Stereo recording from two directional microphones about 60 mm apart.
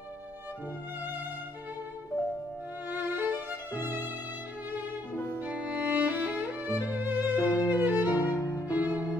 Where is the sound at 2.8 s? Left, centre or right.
Right.